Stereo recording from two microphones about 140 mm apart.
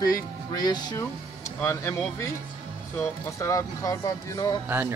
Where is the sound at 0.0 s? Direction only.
25° left (ahead or behind).